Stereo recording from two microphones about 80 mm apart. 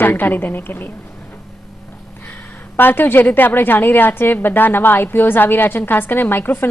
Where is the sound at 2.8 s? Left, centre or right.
Left.